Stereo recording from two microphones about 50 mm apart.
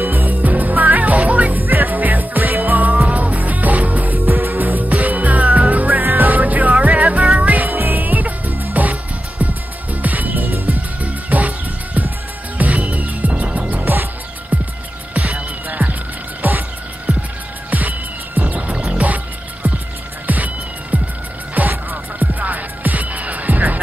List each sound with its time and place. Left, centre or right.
0.1 s music: right
1.2 s music: right
1.5 s music: right
3.1 s music: right
4.3 s music: right
4.7 s music: right
5.9 s music: right
6.9 s music: centre
7.3 s music: right
7.6 s music: right
8.8 s music: right
16.4 s music: right
17.1 s music: right
17.6 s music: right